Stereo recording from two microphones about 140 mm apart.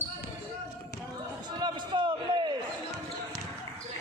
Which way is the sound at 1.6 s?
35° right (ahead or behind).